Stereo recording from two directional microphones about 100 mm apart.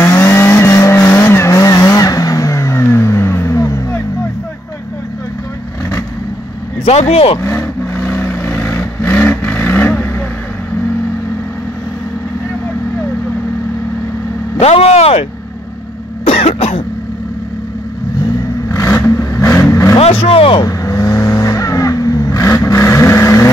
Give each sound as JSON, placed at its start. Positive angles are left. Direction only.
{"t": 0.0, "sound": "vehicle", "side_deg": 25}
{"t": 6.8, "sound": "speech", "side_deg": 90}
{"t": 7.4, "sound": "vehicle", "side_deg": 25}
{"t": 14.6, "sound": "vehicle", "side_deg": 90}
{"t": 16.3, "sound": "cough", "side_deg": 90}
{"t": 18.7, "sound": "vehicle", "side_deg": 30}
{"t": 20.0, "sound": "speech", "side_deg": 80}
{"t": 20.6, "sound": "vehicle", "side_deg": 35}